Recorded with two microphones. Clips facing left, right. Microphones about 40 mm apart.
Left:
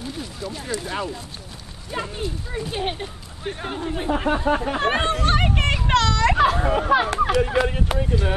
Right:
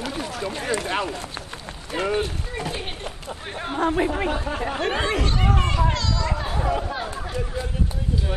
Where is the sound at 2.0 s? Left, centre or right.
Right.